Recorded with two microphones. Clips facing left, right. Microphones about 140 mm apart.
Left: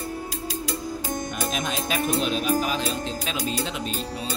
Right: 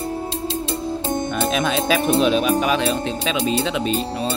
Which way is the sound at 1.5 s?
75° right (ahead or behind).